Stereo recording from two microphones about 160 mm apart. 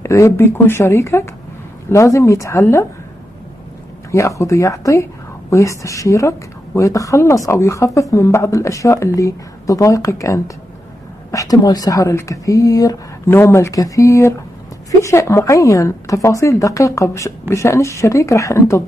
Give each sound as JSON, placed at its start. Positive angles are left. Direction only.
{"t": 0.0, "sound": "speech", "side_deg": 20}
{"t": 4.1, "sound": "a woman's voice", "side_deg": 20}